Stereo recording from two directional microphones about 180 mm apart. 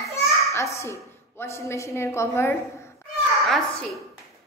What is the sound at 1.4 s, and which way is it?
A woman's voice, 15° left (ahead or behind).